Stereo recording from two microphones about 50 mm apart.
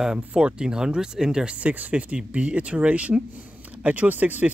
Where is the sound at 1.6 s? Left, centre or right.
Right.